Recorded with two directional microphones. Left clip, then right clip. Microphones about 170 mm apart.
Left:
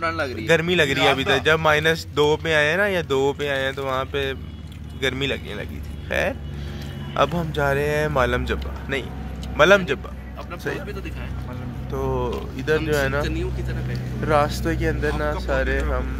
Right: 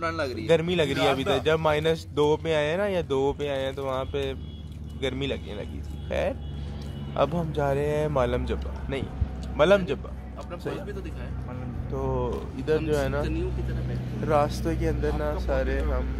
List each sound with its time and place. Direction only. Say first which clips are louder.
0.0 s a man's voice: left 4 dB; 70° right (ahead or behind)
0.5 s speech: left 5 dB; centre (ahead or behind)
11.9 s speech: left 4 dB; 5° right (ahead or behind)
14.2 s speech: left 4 dB; 10° left (ahead or behind)